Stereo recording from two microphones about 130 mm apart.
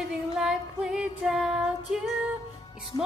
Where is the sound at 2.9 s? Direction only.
40° left (ahead or behind).